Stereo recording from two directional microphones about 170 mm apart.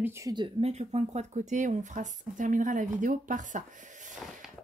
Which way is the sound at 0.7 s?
40° right (ahead or behind).